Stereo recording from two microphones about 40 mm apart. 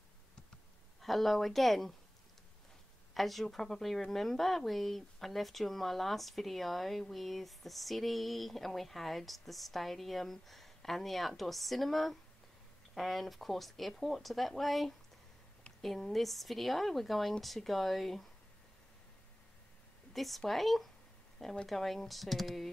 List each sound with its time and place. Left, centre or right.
1.0 s speech: centre
3.2 s a woman's voice: centre
20.1 s speech: centre